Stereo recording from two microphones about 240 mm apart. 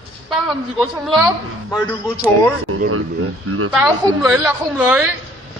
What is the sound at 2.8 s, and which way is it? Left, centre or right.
Speech, right.